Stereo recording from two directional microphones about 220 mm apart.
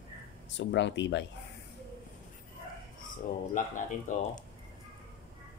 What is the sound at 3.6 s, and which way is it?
Speech, 35° left (ahead or behind).